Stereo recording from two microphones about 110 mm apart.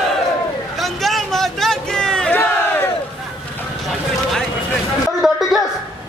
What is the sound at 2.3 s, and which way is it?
Battle cry, 15° left (ahead or behind).